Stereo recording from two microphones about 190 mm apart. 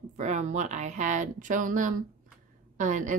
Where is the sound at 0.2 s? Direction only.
40° right (ahead or behind).